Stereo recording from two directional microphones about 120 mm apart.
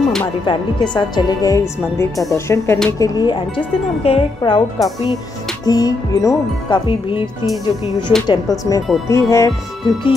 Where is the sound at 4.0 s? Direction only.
55° left (ahead or behind).